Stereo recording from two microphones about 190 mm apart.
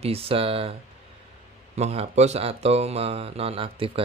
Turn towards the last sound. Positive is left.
turn(degrees=-30)  # may be behind; listen again after turning